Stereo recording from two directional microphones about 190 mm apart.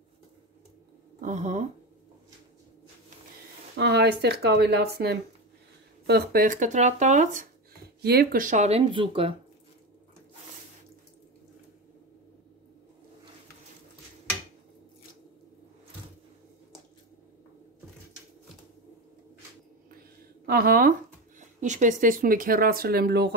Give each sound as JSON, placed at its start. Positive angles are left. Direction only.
{"t": 1.2, "sound": "speech", "side_deg": -40}
{"t": 3.7, "sound": "speech", "side_deg": -65}
{"t": 8.0, "sound": "speech", "side_deg": -55}
{"t": 20.4, "sound": "speech", "side_deg": -50}